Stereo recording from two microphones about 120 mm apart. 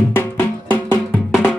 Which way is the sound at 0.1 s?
20° left (ahead or behind).